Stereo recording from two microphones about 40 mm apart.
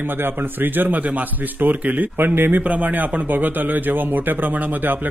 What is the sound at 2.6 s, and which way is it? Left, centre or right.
Speech, right.